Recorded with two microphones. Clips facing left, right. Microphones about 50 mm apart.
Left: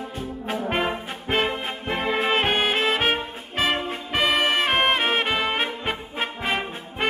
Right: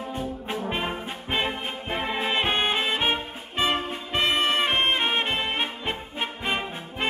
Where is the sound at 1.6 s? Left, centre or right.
Left.